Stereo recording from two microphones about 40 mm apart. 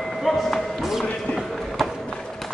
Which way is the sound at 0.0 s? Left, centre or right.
Centre.